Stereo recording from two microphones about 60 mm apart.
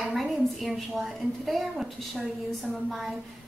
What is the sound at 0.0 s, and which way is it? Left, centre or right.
A woman's voice, centre.